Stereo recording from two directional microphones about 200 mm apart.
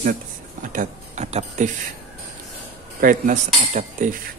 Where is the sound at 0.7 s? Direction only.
35° right (ahead or behind).